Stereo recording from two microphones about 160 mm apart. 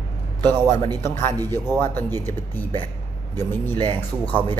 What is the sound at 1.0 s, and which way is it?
Mantra, 15° left (ahead or behind).